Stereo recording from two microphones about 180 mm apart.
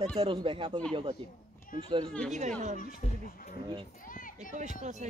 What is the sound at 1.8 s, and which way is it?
Speech, 30° right (ahead or behind).